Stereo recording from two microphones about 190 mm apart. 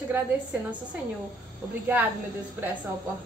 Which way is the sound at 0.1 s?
10° right (ahead or behind).